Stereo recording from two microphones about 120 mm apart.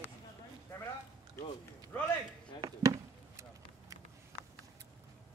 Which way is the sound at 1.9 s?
20° left (ahead or behind).